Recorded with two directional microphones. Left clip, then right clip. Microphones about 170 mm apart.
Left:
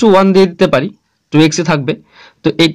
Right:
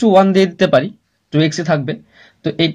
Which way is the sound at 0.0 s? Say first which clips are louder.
Left 3 dB; 35° left (ahead or behind).